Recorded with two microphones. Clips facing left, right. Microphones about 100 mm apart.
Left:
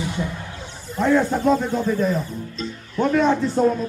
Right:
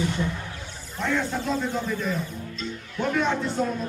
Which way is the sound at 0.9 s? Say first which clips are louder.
Left 8 dB; 40° left (ahead or behind).